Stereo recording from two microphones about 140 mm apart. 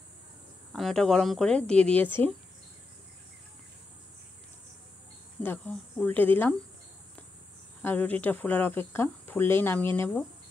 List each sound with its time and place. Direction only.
0.7 s a woman's voice: centre (ahead or behind)
5.4 s speech: 15° left (ahead or behind)
7.8 s speech: 15° left (ahead or behind)